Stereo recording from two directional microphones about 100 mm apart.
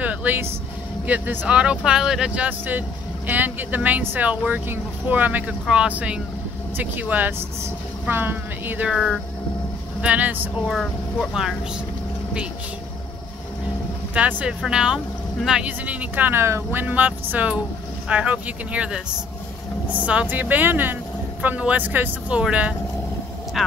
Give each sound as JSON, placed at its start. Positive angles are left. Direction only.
{"t": 0.0, "sound": "vehicle", "side_deg": -15}
{"t": 1.0, "sound": "speech", "side_deg": -15}
{"t": 8.9, "sound": "speech", "side_deg": 0}
{"t": 10.0, "sound": "speech", "side_deg": -15}
{"t": 10.7, "sound": "speech", "side_deg": -5}
{"t": 14.1, "sound": "speech", "side_deg": -10}
{"t": 20.1, "sound": "speech", "side_deg": -15}